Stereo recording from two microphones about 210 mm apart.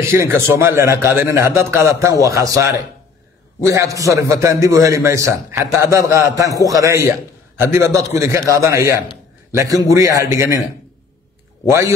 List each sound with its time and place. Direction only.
0.0 s a man's voice: 10° right (ahead or behind)